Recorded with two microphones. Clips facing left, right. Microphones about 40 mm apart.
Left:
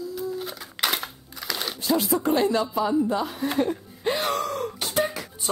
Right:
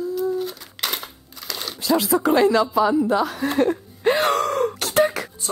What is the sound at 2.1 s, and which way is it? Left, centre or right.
A woman's voice, right.